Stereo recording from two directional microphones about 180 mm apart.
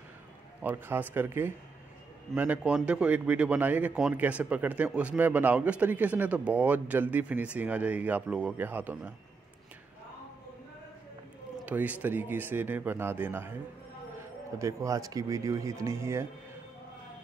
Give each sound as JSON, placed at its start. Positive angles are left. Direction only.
{"t": 0.6, "sound": "a man's voice", "side_deg": -10}
{"t": 11.6, "sound": "a man's voice", "side_deg": -10}
{"t": 14.6, "sound": "a man's voice", "side_deg": -15}